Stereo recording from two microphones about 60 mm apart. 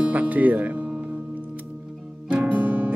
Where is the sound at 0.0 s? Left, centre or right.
Right.